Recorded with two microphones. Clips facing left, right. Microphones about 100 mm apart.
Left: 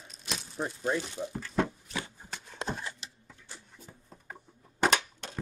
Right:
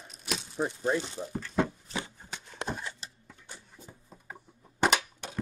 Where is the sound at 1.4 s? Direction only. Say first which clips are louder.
Right 1 dB; centre (ahead or behind).